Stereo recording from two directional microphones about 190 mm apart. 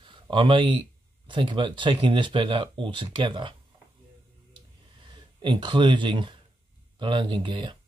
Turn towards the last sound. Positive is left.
turn(degrees=-25)  # may be behind; listen again after turning